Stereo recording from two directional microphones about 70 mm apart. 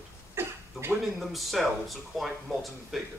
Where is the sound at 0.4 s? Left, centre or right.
Right.